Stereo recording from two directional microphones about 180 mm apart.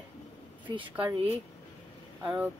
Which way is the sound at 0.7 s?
25° right (ahead or behind).